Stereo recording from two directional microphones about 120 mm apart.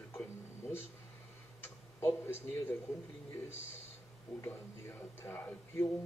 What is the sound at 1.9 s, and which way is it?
Speech, 20° left (ahead or behind).